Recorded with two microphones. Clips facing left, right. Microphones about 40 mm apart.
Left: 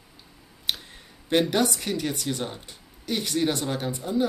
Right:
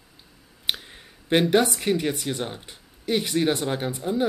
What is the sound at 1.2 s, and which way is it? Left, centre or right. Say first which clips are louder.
Speech: right 3 dB; right.